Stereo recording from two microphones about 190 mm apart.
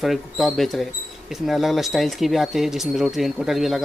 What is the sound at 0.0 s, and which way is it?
Speech, centre (ahead or behind).